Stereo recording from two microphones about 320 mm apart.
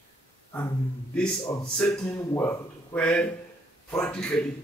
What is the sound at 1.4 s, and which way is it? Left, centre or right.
Speech, centre.